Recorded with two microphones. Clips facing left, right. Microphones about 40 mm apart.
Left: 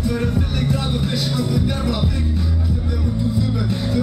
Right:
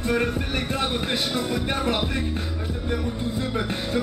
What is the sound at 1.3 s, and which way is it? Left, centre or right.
Music, right.